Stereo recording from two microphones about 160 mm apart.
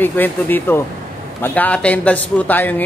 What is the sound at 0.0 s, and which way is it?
A woman's voice, 10° left (ahead or behind).